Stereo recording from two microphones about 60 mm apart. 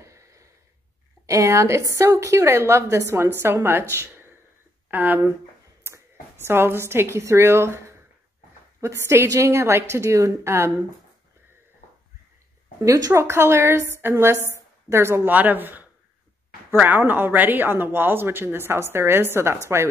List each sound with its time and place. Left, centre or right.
0.0 s a sound: right
1.2 s a woman's voice: right
4.9 s speech: right
5.9 s speech: right
8.8 s a woman's voice: right
12.8 s speech: right
13.1 s a woman's voice: right
15.3 s speech: right